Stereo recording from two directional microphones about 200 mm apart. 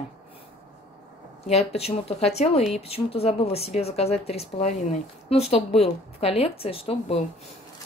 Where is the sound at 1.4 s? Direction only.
30° left (ahead or behind).